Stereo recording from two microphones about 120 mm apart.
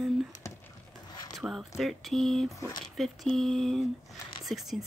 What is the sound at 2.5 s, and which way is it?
Speech, 30° left (ahead or behind).